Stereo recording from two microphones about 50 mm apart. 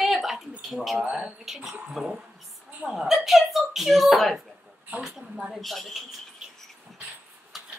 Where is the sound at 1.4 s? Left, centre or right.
Centre.